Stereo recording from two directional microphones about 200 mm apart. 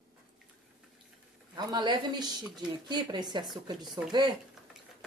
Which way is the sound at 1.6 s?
20° right (ahead or behind).